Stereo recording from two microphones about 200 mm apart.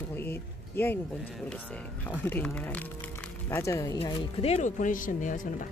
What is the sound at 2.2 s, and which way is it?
Speech, 10° left (ahead or behind).